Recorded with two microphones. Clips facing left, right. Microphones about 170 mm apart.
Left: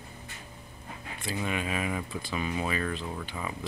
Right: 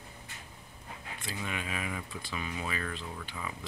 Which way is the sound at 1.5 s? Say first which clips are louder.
Left 6 dB; 20° left (ahead or behind).